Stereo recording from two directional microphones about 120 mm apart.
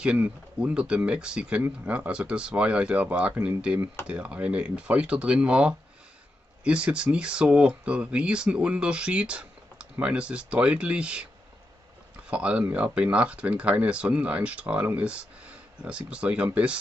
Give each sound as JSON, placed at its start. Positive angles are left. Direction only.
{"t": 0.0, "sound": "speech", "side_deg": -10}
{"t": 12.3, "sound": "speech", "side_deg": -10}